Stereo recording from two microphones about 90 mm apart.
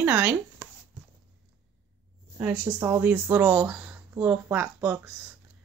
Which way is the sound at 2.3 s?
25° right (ahead or behind).